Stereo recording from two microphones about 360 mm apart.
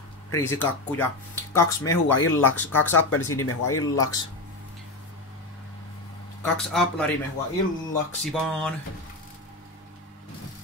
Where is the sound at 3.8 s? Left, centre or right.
Centre.